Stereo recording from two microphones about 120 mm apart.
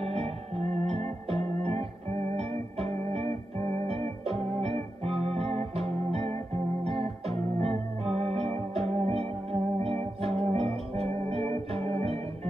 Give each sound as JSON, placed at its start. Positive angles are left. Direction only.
{"t": 0.0, "sound": "music", "side_deg": -55}